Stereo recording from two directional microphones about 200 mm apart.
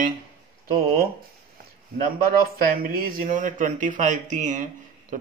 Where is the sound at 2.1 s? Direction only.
45° right (ahead or behind).